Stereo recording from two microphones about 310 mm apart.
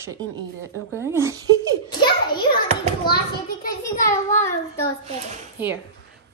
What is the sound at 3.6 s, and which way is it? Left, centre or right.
Speech, left.